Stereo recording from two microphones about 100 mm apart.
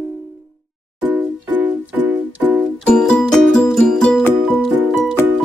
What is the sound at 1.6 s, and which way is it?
Music, 15° right (ahead or behind).